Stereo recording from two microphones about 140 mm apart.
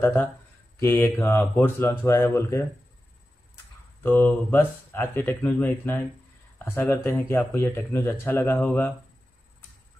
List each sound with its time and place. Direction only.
0.0 s speech: 10° left (ahead or behind)
4.0 s speech: 15° left (ahead or behind)